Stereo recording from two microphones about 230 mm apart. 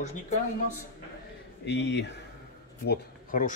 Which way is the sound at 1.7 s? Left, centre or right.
Left.